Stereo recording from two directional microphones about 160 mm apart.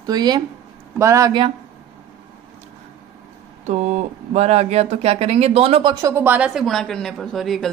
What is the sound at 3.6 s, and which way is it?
A woman's voice, 45° right (ahead or behind).